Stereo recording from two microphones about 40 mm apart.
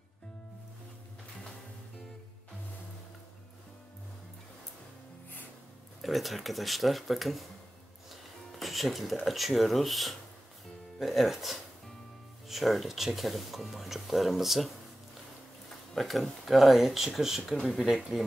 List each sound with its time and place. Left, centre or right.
6.0 s speech: centre
8.5 s music: centre
9.2 s speech: centre
15.9 s speech: centre